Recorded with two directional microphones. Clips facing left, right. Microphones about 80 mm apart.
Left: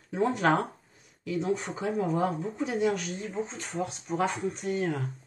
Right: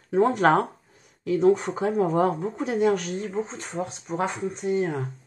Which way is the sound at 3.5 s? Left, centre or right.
Right.